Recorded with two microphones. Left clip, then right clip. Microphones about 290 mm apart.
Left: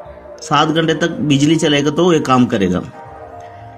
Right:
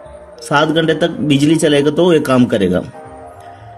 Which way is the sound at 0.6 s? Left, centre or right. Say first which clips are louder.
Right 1 dB; centre.